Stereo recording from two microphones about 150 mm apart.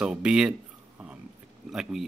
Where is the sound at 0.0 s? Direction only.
5° right (ahead or behind).